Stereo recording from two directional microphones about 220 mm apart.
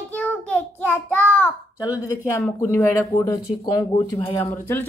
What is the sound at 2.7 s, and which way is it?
A child's voice, 10° left (ahead or behind).